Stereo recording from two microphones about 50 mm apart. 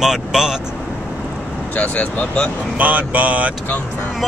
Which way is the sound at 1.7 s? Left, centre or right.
Left.